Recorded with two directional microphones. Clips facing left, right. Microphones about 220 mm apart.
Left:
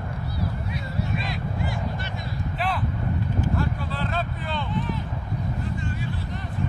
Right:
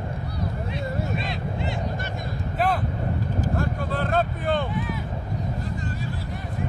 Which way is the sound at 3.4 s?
50° right (ahead or behind).